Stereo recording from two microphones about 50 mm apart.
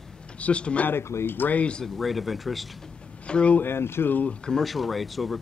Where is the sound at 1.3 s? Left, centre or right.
Left.